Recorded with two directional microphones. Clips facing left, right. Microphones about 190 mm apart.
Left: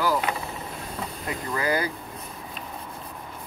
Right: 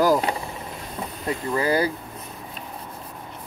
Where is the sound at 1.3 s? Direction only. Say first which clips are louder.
Right 4 dB; 30° right (ahead or behind).